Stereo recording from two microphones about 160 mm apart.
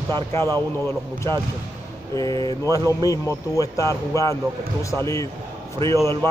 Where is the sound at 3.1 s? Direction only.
20° left (ahead or behind).